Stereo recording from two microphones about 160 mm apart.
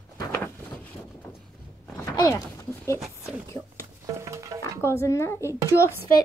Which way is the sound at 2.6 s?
15° left (ahead or behind).